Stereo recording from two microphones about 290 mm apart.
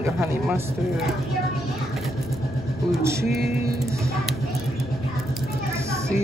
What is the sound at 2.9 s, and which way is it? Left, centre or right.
Speech, centre.